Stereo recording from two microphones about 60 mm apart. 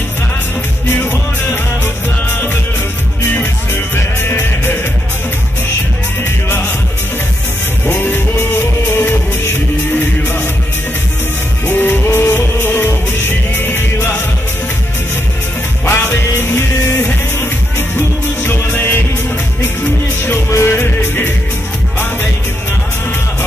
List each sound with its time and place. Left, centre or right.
0.9 s music: left
3.9 s music: left
6.2 s music: left
7.8 s music: left
11.6 s music: left
12.1 s music: left
15.8 s music: left
20.4 s music: left
20.7 s music: left